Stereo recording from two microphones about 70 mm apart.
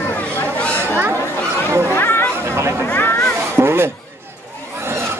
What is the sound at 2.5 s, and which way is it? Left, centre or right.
Chatter, right.